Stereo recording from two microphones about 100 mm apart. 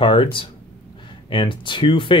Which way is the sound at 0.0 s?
60° left (ahead or behind).